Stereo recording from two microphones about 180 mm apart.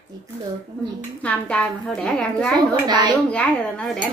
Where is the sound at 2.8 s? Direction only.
25° right (ahead or behind).